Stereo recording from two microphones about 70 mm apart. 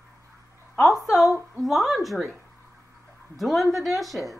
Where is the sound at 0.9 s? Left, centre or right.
Left.